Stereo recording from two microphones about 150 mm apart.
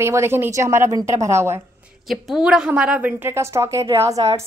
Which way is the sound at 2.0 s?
Centre (ahead or behind).